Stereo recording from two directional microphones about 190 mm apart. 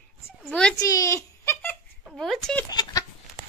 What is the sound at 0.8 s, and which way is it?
Speech, 20° left (ahead or behind).